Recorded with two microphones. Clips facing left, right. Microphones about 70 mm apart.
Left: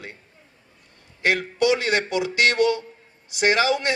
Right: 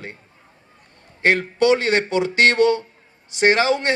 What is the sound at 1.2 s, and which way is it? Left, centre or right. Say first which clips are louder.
Speech: right 4 dB; right.